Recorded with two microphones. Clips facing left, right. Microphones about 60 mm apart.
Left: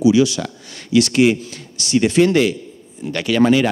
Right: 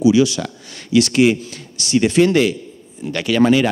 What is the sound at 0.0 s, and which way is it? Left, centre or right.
Speech, centre.